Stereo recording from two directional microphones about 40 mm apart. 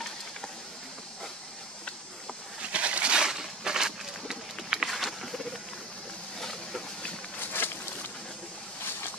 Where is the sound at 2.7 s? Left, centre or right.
Right; by 5.6 s centre.